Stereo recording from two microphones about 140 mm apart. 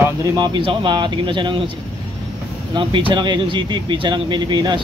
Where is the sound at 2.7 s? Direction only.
35° right (ahead or behind).